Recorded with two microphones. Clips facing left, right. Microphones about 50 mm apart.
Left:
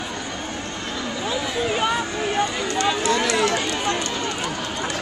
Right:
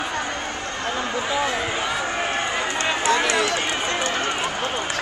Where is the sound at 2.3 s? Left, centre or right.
Right.